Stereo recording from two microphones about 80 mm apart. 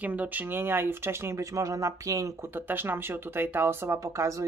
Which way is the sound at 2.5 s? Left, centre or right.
Right.